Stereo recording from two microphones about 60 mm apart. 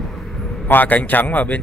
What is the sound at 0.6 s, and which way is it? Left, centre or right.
Speech, left.